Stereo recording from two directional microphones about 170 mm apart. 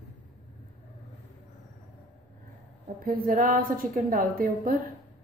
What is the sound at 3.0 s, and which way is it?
A woman's voice, 60° right (ahead or behind).